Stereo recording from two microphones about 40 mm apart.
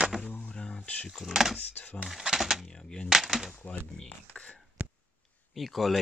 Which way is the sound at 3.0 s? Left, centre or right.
Centre.